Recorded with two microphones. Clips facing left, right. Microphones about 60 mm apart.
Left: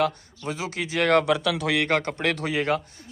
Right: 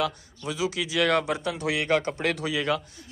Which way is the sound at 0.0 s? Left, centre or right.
Left.